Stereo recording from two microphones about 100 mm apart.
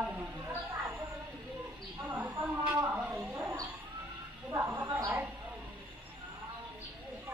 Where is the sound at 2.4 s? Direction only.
15° right (ahead or behind).